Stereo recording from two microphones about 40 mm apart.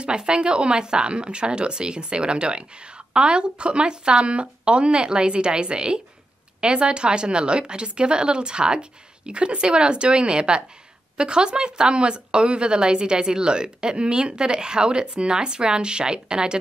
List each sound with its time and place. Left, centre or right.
0.0 s speech: right